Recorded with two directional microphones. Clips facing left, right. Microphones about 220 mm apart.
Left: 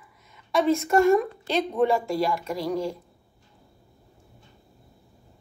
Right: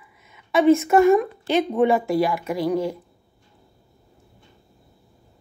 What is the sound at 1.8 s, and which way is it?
Speech, 55° right (ahead or behind).